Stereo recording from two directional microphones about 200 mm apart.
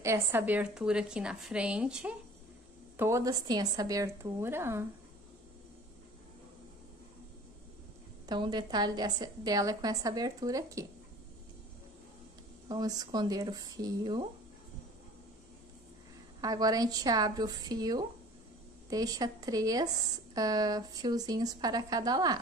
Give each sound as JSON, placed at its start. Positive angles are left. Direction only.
{"t": 0.0, "sound": "a woman's voice", "side_deg": -15}
{"t": 3.0, "sound": "speech", "side_deg": -15}
{"t": 8.3, "sound": "a woman's voice", "side_deg": -20}
{"t": 12.6, "sound": "a woman's voice", "side_deg": -20}
{"t": 16.3, "sound": "a woman's voice", "side_deg": -20}